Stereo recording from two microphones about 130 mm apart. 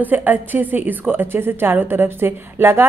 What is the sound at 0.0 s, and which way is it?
A woman's voice, 15° right (ahead or behind).